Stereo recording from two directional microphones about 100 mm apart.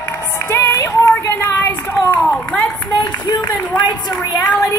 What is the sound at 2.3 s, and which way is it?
Speech, 10° left (ahead or behind).